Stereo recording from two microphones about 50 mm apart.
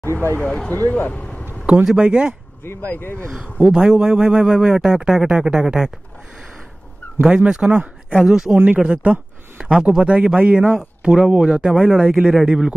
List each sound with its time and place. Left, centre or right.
0.0 s speech: left
0.7 s speech: left
1.9 s speech: centre
2.6 s speech: left
3.6 s speech: centre
7.2 s speech: centre
8.2 s speech: centre
8.7 s speech: right
11.0 s speech: centre